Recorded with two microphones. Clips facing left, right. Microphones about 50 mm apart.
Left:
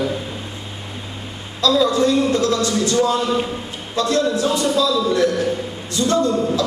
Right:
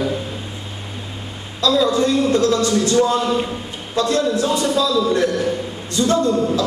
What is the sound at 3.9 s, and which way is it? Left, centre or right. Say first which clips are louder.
Speech: right 1 dB; right.